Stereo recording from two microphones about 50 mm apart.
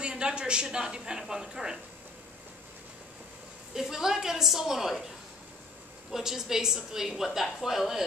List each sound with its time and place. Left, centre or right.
0.0 s a woman's voice: centre
3.7 s a woman's voice: centre
6.1 s a woman's voice: centre